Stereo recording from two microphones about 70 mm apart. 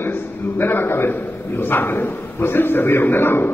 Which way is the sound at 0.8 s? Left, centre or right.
Left.